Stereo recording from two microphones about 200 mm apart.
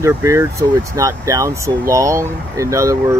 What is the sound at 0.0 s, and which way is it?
Speech, 15° right (ahead or behind).